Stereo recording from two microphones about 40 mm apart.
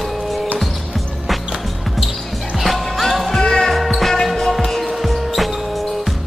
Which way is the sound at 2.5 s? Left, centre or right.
Centre.